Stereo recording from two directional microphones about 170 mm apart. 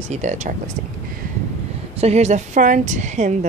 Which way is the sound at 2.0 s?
40° right (ahead or behind).